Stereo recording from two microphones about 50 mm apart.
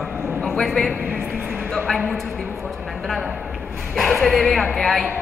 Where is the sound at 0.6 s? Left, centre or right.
Centre.